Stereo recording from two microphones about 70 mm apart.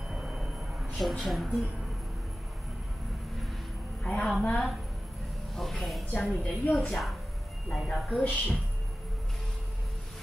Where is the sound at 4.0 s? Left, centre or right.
Centre.